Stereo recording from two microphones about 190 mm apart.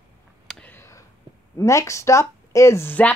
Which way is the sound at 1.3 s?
20° right (ahead or behind).